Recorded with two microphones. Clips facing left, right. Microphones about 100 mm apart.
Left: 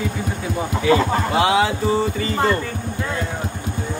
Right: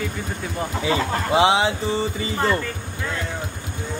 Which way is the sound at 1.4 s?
25° right (ahead or behind).